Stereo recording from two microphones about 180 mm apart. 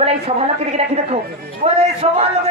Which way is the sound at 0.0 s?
35° right (ahead or behind).